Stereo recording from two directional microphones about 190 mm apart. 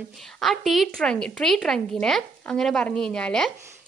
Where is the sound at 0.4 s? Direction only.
Centre (ahead or behind).